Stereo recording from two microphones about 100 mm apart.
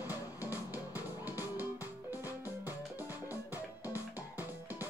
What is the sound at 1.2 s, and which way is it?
Music, 20° right (ahead or behind).